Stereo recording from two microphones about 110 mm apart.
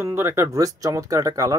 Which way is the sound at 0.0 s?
25° right (ahead or behind).